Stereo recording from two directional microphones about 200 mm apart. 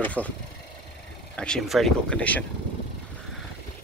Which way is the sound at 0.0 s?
5° left (ahead or behind).